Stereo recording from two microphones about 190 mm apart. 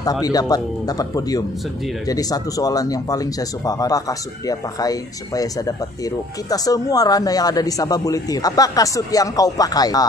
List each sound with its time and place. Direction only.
0.0 s speech: 20° left (ahead or behind)